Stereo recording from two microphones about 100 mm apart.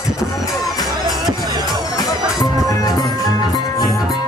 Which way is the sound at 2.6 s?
40° left (ahead or behind).